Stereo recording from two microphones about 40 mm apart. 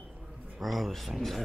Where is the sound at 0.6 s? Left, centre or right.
Centre.